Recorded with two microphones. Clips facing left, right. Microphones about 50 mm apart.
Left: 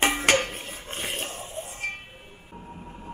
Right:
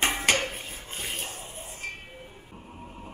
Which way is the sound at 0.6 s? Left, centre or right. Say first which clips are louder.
Left 3 dB; left.